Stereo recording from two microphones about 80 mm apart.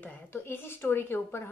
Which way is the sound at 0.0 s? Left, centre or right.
Left.